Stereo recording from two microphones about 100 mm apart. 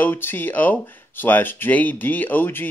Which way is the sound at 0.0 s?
20° left (ahead or behind).